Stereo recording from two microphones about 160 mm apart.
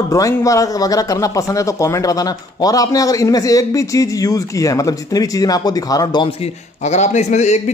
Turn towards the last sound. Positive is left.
turn(degrees=45)  # may be behind; listen again after turning